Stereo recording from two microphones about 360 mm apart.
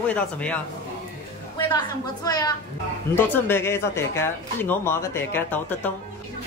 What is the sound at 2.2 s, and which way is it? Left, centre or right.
Speech, centre.